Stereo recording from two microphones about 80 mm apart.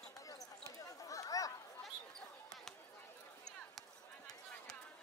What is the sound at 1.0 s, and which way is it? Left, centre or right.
Chatter, left.